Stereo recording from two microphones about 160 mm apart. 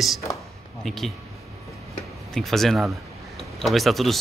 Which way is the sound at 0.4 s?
Centre (ahead or behind).